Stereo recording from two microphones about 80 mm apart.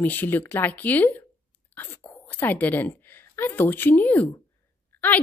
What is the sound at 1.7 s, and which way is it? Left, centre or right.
Whispering, left.